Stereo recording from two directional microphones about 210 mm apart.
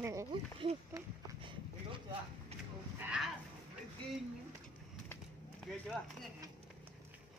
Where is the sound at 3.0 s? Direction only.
5° right (ahead or behind).